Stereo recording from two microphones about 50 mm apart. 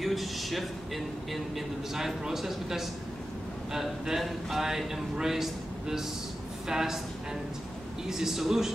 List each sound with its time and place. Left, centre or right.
0.0 s speech: centre
8.1 s speech: centre